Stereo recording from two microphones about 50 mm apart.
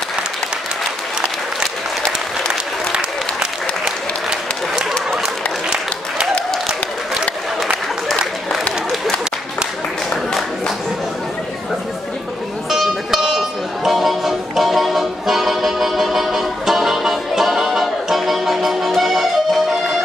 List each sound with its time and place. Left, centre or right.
2.9 s applause: centre
12.6 s music: centre